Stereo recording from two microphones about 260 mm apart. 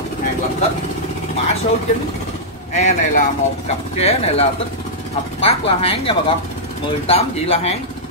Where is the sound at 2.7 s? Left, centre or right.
Left.